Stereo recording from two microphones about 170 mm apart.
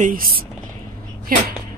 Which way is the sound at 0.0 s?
55° right (ahead or behind).